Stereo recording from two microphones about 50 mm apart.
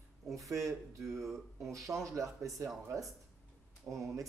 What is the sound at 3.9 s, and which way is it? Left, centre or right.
Speech, right.